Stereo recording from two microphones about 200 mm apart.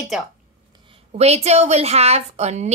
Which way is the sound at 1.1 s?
30° right (ahead or behind).